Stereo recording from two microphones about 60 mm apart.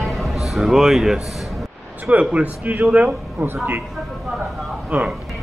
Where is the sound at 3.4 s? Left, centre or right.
Right.